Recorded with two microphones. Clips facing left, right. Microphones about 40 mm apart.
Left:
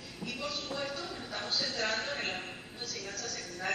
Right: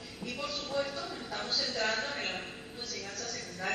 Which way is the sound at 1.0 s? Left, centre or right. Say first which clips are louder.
Right 1 dB; centre.